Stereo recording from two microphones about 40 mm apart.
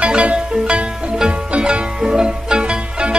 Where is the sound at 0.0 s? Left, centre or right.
Right.